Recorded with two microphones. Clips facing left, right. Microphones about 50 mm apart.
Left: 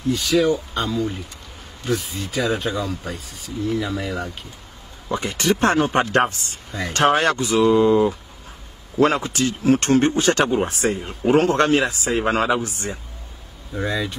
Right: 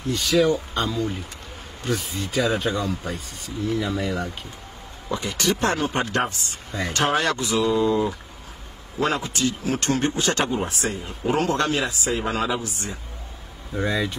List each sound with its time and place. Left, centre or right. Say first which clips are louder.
0.1 s speech: left 1 dB; centre
5.1 s speech: left 3 dB; left
8.9 s speech: left 6 dB; left
13.7 s speech: even; centre